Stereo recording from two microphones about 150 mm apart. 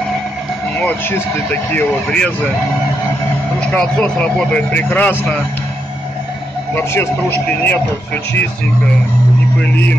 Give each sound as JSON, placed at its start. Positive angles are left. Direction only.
{"t": 0.7, "sound": "speech", "side_deg": 10}
{"t": 3.5, "sound": "speech", "side_deg": 5}
{"t": 6.7, "sound": "speech", "side_deg": 15}